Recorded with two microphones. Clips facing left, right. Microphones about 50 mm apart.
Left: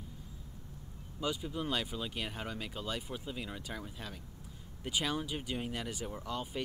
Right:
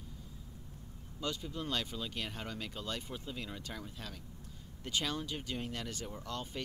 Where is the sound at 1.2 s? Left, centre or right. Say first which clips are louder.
Left 3 dB; centre.